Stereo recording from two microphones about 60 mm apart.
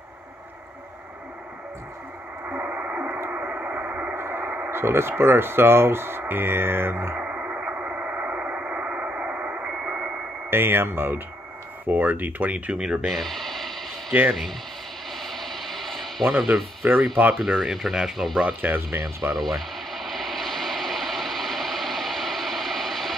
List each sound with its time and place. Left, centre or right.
2.4 s radio: right
4.1 s speech: right
7.2 s radio: right
10.5 s speech: right
12.8 s speech: centre
13.1 s a sound: centre
14.1 s speech: right
15.0 s a sound: centre
16.8 s speech: right
17.6 s speech: centre
18.6 s speech: right
19.3 s radio: centre